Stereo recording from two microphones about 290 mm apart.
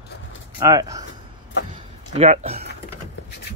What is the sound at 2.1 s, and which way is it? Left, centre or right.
Speech, right.